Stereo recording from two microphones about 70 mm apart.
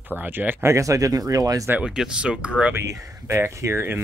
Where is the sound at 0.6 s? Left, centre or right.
Right.